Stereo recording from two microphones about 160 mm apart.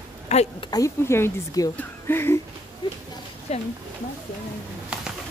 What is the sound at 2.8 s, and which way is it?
Speech, 25° left (ahead or behind).